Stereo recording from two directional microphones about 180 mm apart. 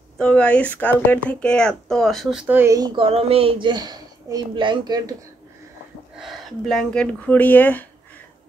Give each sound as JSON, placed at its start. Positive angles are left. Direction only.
{"t": 0.2, "sound": "speech", "side_deg": 5}
{"t": 3.0, "sound": "speech", "side_deg": -35}
{"t": 6.1, "sound": "speech", "side_deg": 0}